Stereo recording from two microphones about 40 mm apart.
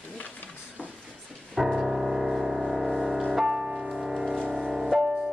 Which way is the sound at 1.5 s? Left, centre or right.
Centre.